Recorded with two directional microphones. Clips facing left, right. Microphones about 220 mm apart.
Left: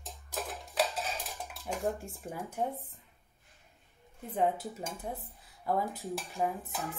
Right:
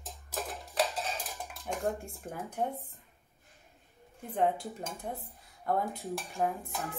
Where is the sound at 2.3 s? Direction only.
5° left (ahead or behind).